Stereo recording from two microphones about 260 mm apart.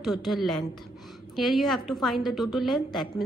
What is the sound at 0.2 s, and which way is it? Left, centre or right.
A woman's voice, centre.